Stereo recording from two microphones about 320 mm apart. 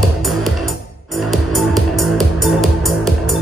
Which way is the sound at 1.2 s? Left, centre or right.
Centre.